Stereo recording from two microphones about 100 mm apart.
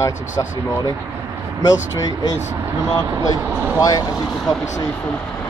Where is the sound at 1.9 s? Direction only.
35° left (ahead or behind).